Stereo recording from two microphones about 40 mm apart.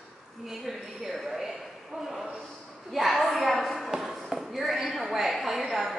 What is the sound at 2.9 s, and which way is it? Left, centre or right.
Speech, centre.